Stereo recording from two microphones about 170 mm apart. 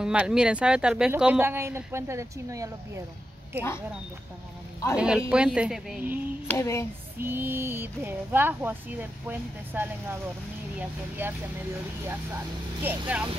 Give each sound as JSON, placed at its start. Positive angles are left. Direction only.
{"t": 0.0, "sound": "speech", "side_deg": -5}
{"t": 4.9, "sound": "speech", "side_deg": -5}
{"t": 6.4, "sound": "speech", "side_deg": 15}
{"t": 7.2, "sound": "speech", "side_deg": -15}